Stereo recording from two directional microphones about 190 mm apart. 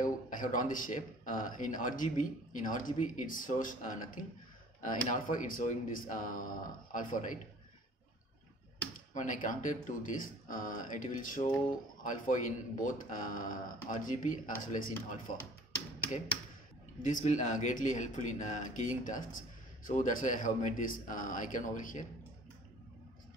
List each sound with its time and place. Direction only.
0.4 s a man's voice: 45° left (ahead or behind)
9.1 s a man's voice: 45° left (ahead or behind)
17.0 s a man's voice: 40° left (ahead or behind)